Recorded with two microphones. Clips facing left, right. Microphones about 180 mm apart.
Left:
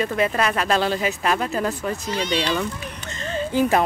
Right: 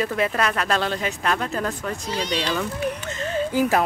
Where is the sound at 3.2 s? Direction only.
5° right (ahead or behind).